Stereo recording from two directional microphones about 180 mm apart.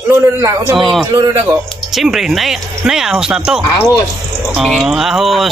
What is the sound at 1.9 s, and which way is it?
Speech, centre (ahead or behind).